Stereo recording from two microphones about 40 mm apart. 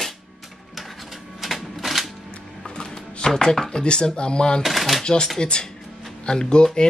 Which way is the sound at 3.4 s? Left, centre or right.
Centre.